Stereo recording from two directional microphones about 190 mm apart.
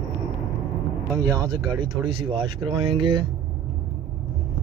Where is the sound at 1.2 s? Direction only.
20° right (ahead or behind).